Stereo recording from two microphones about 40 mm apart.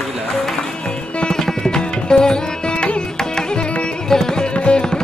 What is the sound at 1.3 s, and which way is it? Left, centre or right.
Music, centre.